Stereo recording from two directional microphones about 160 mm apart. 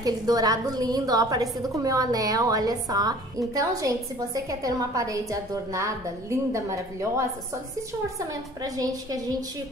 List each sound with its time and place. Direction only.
0.0 s a woman's voice: 25° right (ahead or behind)
8.3 s a woman's voice: 20° right (ahead or behind)